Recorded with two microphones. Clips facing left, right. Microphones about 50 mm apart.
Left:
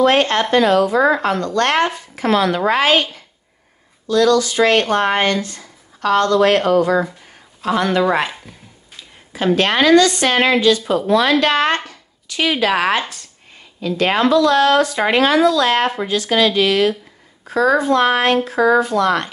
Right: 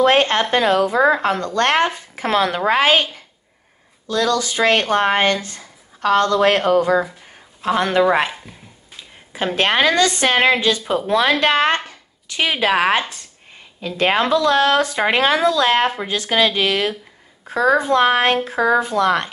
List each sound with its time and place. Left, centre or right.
0.0 s speech: right
4.1 s speech: right
8.3 s speech: centre
9.6 s speech: right